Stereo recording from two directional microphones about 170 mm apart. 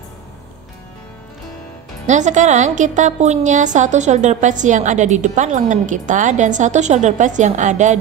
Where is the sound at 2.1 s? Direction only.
45° right (ahead or behind).